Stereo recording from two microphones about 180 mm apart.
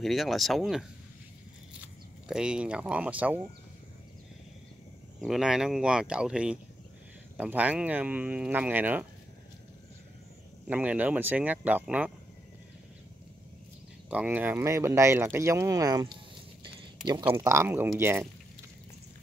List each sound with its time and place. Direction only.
0.0 s speech: centre (ahead or behind)
2.2 s speech: 5° right (ahead or behind)
5.2 s speech: centre (ahead or behind)
10.7 s speech: 10° right (ahead or behind)
14.1 s speech: 10° right (ahead or behind)
16.6 s a sound: 25° right (ahead or behind)
17.2 s speech: 15° right (ahead or behind)